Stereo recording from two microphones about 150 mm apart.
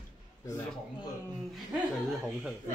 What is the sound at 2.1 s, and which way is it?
Speech, centre (ahead or behind).